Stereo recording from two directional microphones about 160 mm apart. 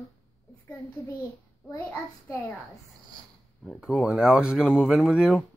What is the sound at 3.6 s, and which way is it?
Speech, centre (ahead or behind).